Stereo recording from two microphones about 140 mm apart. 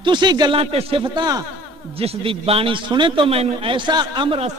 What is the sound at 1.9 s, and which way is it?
A man's voice, 45° right (ahead or behind).